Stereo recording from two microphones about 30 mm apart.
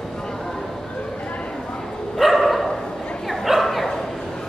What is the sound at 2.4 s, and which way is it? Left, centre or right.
Dog, centre.